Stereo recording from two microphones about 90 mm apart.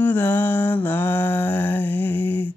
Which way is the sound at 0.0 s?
20° left (ahead or behind).